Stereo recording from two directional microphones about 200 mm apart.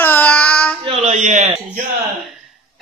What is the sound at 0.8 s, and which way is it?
A man's voice, 30° right (ahead or behind).